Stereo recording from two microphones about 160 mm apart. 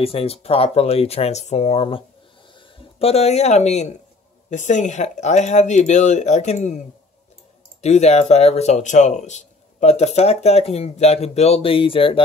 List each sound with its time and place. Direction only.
0.0 s speech: 35° left (ahead or behind)
7.8 s speech: 45° left (ahead or behind)